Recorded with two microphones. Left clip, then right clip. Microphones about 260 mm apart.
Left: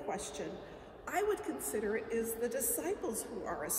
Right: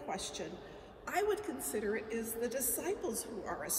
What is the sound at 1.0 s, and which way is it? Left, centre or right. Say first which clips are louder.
A woman's voice: even; centre.